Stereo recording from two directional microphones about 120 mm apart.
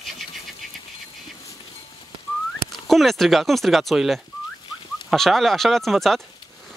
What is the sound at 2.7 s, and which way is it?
Speech, centre (ahead or behind).